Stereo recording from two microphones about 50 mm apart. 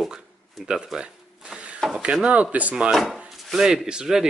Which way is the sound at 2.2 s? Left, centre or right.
Right.